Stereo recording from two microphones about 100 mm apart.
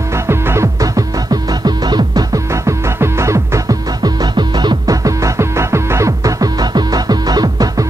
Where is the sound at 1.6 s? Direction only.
40° right (ahead or behind).